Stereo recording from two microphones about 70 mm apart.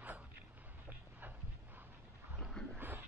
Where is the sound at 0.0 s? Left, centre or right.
Right.